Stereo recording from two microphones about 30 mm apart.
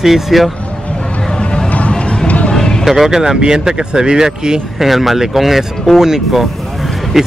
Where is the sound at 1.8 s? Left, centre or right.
Left.